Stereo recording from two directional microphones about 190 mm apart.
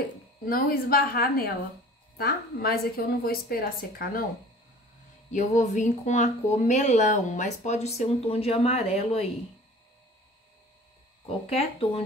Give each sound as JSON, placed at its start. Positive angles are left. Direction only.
{"t": 0.5, "sound": "a woman's voice", "side_deg": 50}
{"t": 5.3, "sound": "speech", "side_deg": 40}
{"t": 11.2, "sound": "speech", "side_deg": 30}